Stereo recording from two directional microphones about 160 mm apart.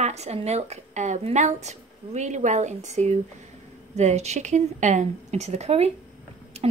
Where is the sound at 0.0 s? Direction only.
45° right (ahead or behind).